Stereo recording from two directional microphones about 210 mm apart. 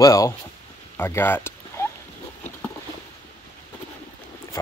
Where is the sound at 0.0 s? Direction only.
15° left (ahead or behind).